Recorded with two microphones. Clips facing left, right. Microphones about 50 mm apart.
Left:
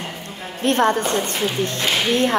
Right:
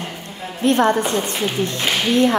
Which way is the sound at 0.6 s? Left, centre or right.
Left.